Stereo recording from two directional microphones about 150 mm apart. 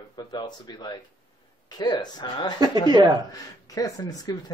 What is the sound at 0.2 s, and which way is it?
Speech, 30° left (ahead or behind).